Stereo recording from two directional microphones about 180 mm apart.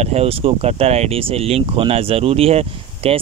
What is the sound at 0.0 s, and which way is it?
Speech, 35° right (ahead or behind).